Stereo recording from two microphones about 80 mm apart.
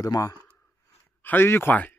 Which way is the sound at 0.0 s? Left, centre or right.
Left.